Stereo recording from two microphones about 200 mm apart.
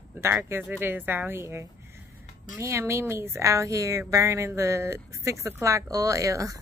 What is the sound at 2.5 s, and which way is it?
A woman's voice, 15° right (ahead or behind).